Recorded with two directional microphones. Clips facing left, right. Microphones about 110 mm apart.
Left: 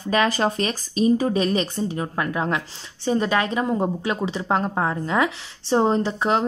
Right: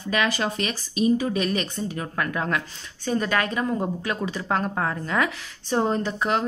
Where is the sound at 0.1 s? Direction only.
35° left (ahead or behind).